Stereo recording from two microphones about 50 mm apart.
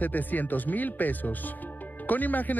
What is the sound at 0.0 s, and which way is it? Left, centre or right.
Speech, left.